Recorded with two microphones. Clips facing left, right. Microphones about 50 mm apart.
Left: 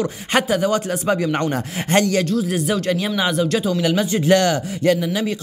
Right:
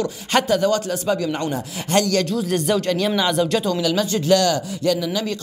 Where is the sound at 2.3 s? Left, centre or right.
Centre.